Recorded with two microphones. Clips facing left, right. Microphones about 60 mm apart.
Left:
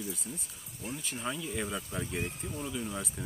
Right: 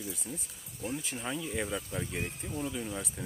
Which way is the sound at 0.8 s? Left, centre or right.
Centre.